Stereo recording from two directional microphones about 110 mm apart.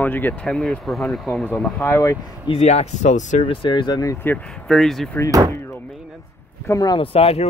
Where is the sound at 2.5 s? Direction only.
70° left (ahead or behind).